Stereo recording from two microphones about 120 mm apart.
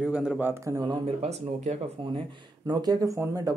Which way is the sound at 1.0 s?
65° right (ahead or behind).